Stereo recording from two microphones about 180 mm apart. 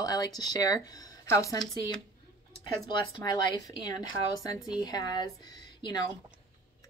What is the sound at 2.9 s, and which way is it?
Speech, 25° left (ahead or behind).